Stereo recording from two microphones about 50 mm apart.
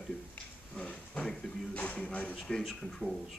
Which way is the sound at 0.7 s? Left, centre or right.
Left.